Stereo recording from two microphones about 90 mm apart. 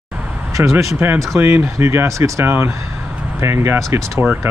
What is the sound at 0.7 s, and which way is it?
Speech, 25° right (ahead or behind).